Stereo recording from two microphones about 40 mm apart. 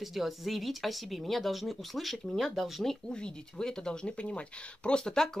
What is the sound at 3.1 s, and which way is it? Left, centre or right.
Speech, left.